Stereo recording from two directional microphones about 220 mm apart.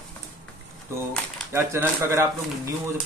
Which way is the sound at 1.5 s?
10° right (ahead or behind).